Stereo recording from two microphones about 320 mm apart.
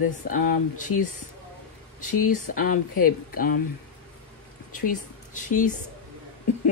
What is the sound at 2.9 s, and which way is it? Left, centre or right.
Speech, left.